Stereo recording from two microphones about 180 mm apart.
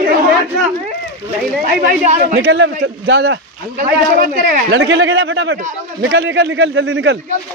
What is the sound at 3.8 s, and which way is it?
Speech, 50° right (ahead or behind).